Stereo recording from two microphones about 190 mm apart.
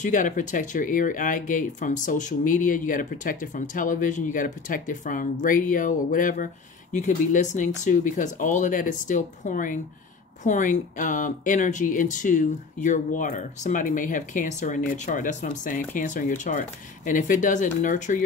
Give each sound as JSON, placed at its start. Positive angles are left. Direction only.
{"t": 0.0, "sound": "speech", "side_deg": 40}